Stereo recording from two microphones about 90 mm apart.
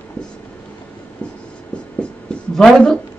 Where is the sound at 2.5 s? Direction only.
5° left (ahead or behind).